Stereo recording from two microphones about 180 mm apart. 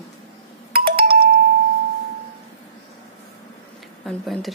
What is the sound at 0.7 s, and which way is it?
Ringtone, 55° right (ahead or behind).